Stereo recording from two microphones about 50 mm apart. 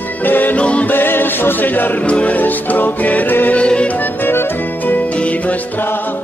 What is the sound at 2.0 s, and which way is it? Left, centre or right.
Music, left.